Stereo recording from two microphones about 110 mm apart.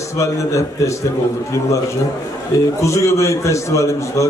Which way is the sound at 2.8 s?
30° left (ahead or behind).